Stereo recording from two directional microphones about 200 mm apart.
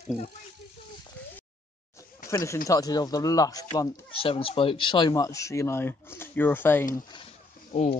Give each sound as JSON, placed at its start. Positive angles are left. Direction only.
{"t": 2.2, "sound": "speech", "side_deg": 15}
{"t": 4.1, "sound": "speech", "side_deg": 25}
{"t": 7.7, "sound": "speech", "side_deg": 30}